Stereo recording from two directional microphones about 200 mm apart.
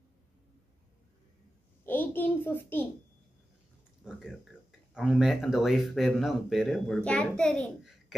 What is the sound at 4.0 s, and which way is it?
A child's voice, 5° right (ahead or behind).